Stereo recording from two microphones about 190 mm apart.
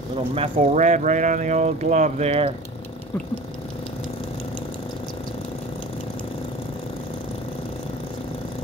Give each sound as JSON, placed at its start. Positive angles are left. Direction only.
{"t": 0.3, "sound": "speech", "side_deg": -35}